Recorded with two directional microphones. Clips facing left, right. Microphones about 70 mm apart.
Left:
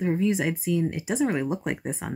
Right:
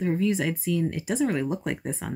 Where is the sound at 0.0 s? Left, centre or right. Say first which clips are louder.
Left 1 dB; centre.